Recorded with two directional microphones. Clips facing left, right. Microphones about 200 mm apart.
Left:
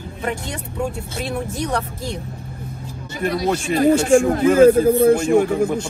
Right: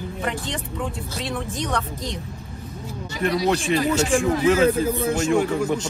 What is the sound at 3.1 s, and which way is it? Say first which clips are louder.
Speech: left 1 dB; 55° left (ahead or behind).